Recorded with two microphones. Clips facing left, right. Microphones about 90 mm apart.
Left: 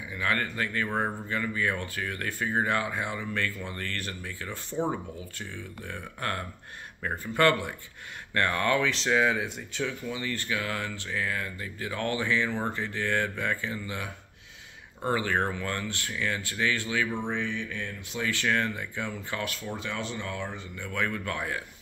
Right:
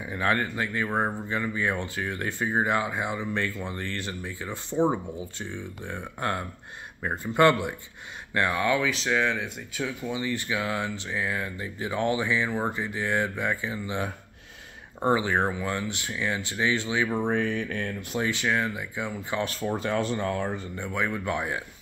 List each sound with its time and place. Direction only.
0.3 s speech: 20° right (ahead or behind); by 9.5 s 5° left (ahead or behind)
9.8 s speech: 15° right (ahead or behind)
15.0 s speech: 20° right (ahead or behind)
17.1 s speech: 45° right (ahead or behind)
18.2 s speech: 15° right (ahead or behind)
19.4 s speech: 40° right (ahead or behind)
20.8 s speech: 20° right (ahead or behind)